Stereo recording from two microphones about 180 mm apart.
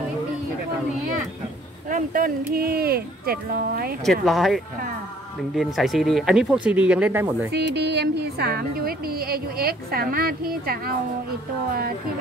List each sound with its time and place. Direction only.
1.9 s a woman's voice: 50° right (ahead or behind)
4.0 s speech: centre (ahead or behind)
5.6 s speech: centre (ahead or behind)
7.5 s a woman's voice: 70° right (ahead or behind)